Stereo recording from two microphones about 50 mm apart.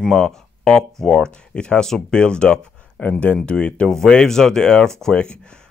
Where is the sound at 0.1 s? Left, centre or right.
Centre.